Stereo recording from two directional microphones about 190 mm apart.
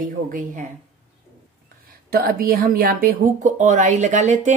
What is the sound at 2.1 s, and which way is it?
Speech, 50° right (ahead or behind).